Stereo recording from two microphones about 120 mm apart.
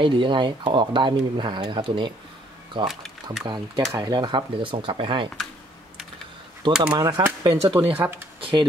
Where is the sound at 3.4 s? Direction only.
40° right (ahead or behind).